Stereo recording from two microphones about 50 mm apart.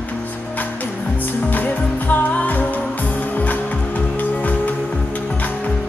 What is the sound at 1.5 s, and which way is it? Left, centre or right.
Music, left.